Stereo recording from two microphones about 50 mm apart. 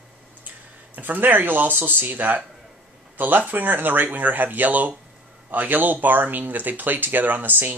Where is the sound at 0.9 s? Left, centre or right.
Right.